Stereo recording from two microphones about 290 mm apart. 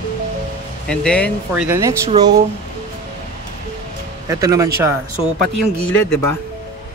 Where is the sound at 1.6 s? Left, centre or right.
Centre.